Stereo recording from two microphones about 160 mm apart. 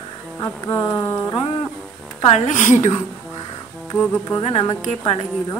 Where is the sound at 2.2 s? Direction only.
45° left (ahead or behind).